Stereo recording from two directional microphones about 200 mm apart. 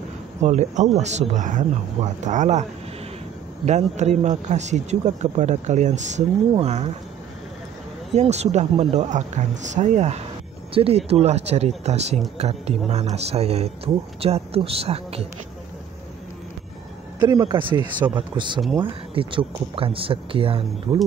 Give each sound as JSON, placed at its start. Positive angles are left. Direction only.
{"t": 0.4, "sound": "speech", "side_deg": -35}
{"t": 3.6, "sound": "speech", "side_deg": -35}
{"t": 8.1, "sound": "speech", "side_deg": -35}
{"t": 17.2, "sound": "speech", "side_deg": -25}